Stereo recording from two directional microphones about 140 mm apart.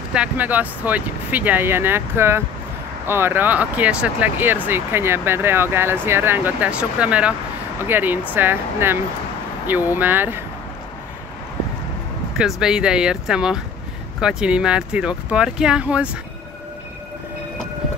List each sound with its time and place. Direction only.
0.1 s speech: 10° right (ahead or behind)
12.4 s speech: 5° right (ahead or behind)